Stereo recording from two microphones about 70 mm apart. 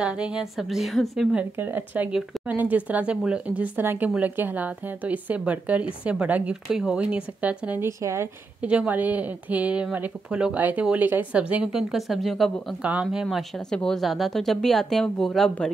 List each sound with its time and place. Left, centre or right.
0.0 s speech: centre
1.6 s speech: right
3.8 s speech: right
6.5 s speech: centre
7.8 s speech: right
8.5 s speech: centre
11.3 s speech: centre
12.8 s speech: centre
13.4 s speech: centre